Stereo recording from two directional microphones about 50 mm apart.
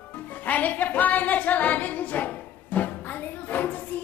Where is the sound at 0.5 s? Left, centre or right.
Left.